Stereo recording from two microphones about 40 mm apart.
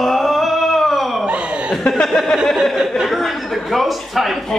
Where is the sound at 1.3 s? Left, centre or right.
Right.